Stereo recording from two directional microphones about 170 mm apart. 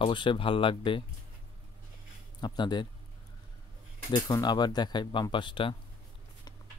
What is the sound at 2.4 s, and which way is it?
Speech, 25° left (ahead or behind).